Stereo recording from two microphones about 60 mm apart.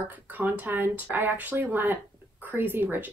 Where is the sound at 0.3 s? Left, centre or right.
Right.